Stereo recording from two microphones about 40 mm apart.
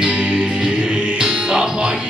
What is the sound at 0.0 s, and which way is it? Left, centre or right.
Music, right.